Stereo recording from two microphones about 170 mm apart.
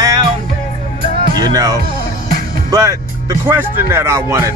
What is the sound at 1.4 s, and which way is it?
Speech, 25° right (ahead or behind).